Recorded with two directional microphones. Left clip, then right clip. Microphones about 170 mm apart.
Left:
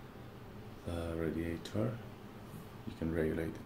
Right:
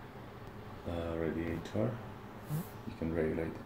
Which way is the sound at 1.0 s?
10° left (ahead or behind).